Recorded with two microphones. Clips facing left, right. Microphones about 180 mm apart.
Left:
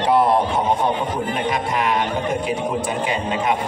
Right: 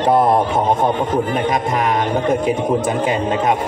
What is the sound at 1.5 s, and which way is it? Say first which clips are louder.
A man's voice: right 3 dB; 45° right (ahead or behind).